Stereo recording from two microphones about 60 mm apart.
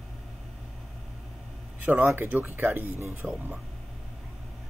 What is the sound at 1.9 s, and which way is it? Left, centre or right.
Speech, right.